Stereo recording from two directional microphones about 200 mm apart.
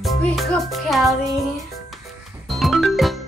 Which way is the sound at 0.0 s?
Centre (ahead or behind).